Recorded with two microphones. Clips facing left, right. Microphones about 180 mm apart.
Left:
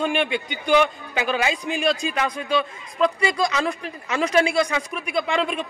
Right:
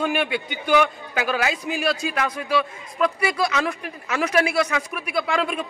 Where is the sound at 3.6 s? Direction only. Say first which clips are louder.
Left 1 dB; 25° left (ahead or behind).